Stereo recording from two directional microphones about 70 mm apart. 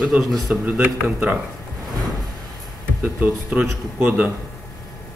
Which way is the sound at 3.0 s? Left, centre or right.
Right.